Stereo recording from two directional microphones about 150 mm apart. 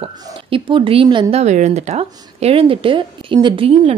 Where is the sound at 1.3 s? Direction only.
50° right (ahead or behind).